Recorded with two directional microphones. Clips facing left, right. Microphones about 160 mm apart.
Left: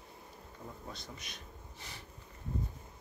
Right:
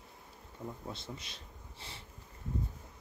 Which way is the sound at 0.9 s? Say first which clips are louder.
Right 3 dB; 30° right (ahead or behind).